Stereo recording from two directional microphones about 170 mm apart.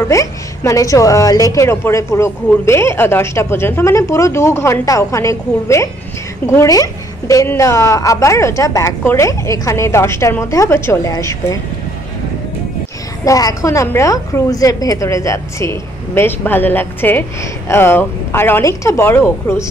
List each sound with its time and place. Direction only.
0.1 s a woman's voice: 20° left (ahead or behind)
13.2 s a woman's voice: 20° left (ahead or behind)